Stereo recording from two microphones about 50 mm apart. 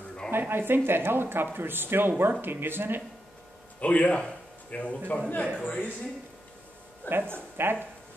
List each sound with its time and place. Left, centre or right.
0.3 s speech: right
3.8 s speech: left
7.1 s speech: right